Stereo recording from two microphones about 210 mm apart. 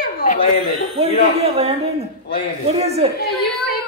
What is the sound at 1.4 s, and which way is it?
A woman's voice, 30° right (ahead or behind).